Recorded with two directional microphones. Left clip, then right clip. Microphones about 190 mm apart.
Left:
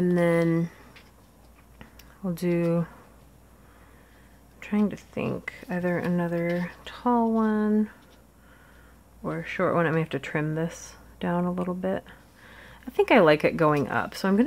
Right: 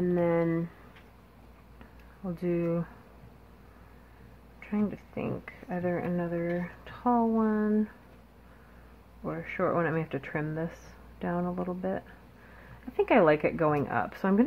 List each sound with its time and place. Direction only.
0.0 s speech: 40° left (ahead or behind)
1.8 s a sound: 30° left (ahead or behind)
4.6 s speech: 30° left (ahead or behind)
9.2 s speech: 30° left (ahead or behind)